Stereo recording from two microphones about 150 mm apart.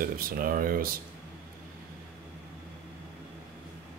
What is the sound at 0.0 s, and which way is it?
Speech, 70° right (ahead or behind).